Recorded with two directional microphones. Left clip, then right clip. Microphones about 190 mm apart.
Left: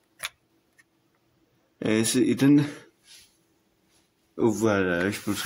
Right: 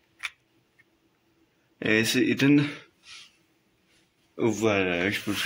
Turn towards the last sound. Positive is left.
turn(degrees=25)  # may be behind; listen again after turning